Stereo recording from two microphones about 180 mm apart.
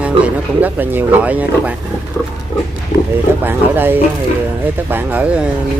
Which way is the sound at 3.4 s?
10° right (ahead or behind).